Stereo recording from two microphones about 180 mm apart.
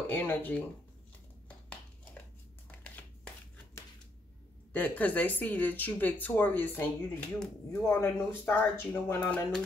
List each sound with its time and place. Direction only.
0.1 s speech: 10° left (ahead or behind)
2.7 s shuffling cards: 10° left (ahead or behind)
4.7 s speech: 10° left (ahead or behind)